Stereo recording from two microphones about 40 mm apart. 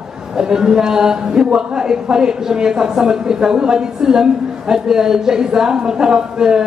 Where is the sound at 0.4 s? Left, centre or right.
Centre.